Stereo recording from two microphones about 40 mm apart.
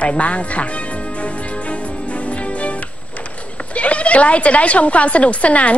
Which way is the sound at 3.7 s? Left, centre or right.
Left.